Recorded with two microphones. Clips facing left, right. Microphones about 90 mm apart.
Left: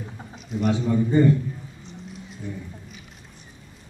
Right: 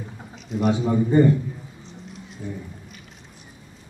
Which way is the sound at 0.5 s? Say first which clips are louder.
Right 2 dB; centre (ahead or behind).